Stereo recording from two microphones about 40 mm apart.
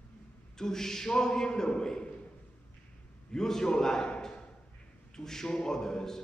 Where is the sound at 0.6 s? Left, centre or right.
Centre.